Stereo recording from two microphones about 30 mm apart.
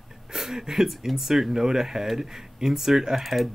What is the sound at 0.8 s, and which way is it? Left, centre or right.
Speech, centre.